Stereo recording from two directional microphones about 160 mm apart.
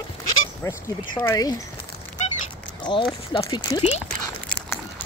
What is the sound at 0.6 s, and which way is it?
Speech, 15° left (ahead or behind).